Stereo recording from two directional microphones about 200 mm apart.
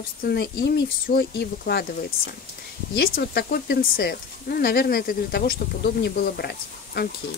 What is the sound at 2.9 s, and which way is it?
Speech, 50° left (ahead or behind).